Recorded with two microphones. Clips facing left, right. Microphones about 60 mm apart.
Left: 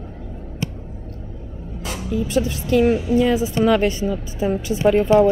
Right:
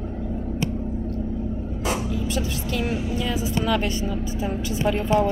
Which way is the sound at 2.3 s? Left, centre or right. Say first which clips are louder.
Left 8 dB; left.